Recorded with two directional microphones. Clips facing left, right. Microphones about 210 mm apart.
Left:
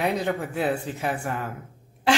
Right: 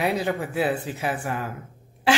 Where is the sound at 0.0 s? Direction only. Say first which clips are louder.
Right 1 dB; 5° right (ahead or behind).